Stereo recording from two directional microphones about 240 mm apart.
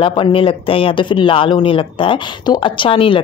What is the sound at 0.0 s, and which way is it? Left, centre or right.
Speech, left.